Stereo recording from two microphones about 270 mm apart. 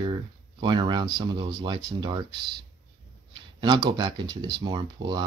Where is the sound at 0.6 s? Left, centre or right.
Centre.